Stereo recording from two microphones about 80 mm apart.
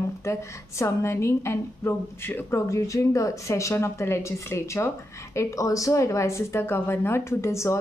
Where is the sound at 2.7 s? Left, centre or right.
Left.